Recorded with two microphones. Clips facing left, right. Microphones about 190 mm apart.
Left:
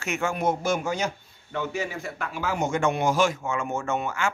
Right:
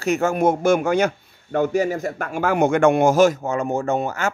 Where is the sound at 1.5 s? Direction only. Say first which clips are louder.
Right 10 dB; 45° right (ahead or behind).